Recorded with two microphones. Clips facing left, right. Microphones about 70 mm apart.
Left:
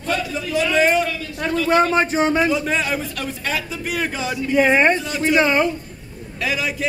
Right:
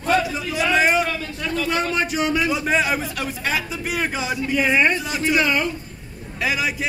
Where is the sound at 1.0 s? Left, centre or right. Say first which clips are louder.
Even; right.